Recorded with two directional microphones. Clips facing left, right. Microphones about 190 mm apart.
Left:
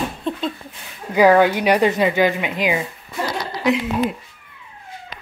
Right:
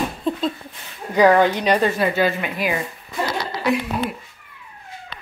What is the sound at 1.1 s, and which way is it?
A woman's voice, 10° left (ahead or behind).